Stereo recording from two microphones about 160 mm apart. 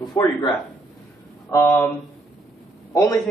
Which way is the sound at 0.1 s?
25° left (ahead or behind).